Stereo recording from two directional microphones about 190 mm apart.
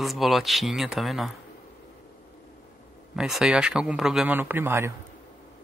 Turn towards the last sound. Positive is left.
turn(degrees=-10)  # may be behind; listen again after turning